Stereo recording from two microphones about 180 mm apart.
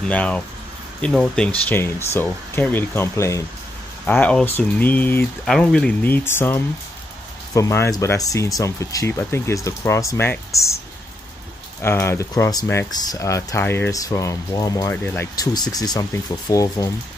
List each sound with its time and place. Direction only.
0.0 s speech: 5° left (ahead or behind)
11.8 s speech: 15° left (ahead or behind)